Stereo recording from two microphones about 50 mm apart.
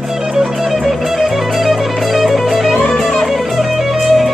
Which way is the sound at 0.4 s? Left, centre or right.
Centre.